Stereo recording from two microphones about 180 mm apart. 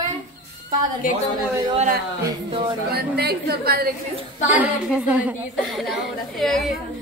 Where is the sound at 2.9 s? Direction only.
60° right (ahead or behind).